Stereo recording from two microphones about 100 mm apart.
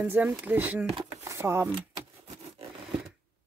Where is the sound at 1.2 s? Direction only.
25° right (ahead or behind).